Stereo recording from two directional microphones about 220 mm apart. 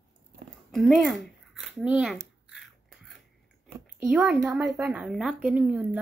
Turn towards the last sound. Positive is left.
turn(degrees=-5)  # may be behind; listen again after turning